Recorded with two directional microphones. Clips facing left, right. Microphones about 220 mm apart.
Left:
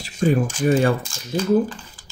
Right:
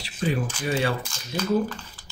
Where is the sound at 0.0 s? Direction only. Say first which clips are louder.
Left 7 dB; 45° left (ahead or behind).